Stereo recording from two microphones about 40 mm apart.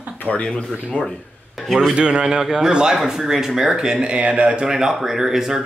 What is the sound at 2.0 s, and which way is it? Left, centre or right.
A man's voice, right.